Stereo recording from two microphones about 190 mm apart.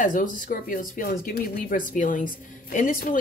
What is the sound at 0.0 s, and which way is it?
Speech, 45° left (ahead or behind).